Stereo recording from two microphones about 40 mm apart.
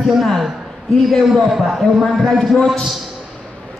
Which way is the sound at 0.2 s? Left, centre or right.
Centre.